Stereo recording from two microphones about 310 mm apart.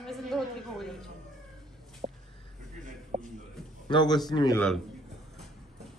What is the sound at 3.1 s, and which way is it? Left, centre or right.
Speech, right.